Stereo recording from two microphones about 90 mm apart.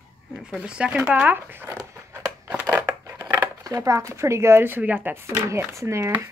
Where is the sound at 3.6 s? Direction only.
35° right (ahead or behind); by 5.2 s 20° right (ahead or behind).